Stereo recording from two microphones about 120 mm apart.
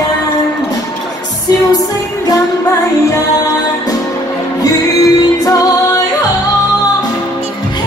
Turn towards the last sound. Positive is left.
turn(degrees=30)  # may be behind; listen again after turning